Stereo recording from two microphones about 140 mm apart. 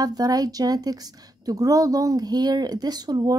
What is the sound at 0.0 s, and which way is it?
A woman's voice, 25° right (ahead or behind).